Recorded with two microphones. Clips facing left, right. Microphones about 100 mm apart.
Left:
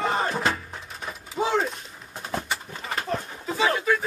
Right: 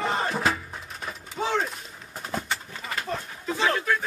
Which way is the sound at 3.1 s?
5° left (ahead or behind).